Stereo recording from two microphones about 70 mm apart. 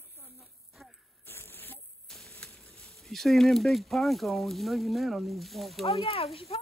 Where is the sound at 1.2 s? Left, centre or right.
Left.